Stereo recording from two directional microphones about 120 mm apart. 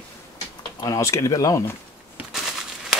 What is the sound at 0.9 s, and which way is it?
Speech, 25° left (ahead or behind).